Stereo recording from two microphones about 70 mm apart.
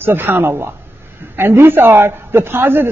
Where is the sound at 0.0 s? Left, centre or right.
Right.